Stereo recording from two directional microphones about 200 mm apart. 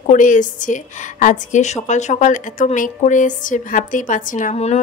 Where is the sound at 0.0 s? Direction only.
40° left (ahead or behind).